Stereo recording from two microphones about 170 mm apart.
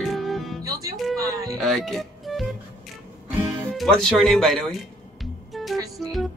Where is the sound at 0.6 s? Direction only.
20° right (ahead or behind).